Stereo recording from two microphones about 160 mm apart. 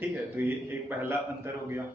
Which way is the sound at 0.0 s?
10° right (ahead or behind).